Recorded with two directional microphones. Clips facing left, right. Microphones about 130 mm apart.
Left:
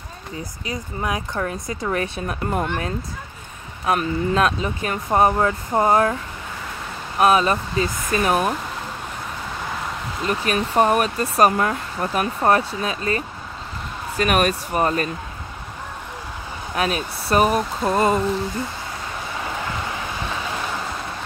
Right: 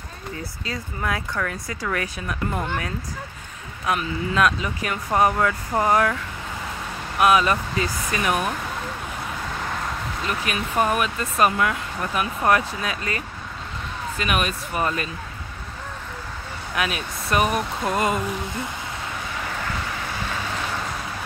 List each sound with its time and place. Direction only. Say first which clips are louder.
0.4 s speech: left 3 dB; 20° left (ahead or behind)
10.2 s speech: left 6 dB; 40° left (ahead or behind)
14.1 s speech: left 6 dB; 45° left (ahead or behind)
16.7 s speech: left 3 dB; 35° left (ahead or behind)